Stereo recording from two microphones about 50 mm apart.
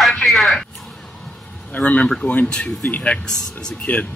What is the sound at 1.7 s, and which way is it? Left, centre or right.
Speech, left.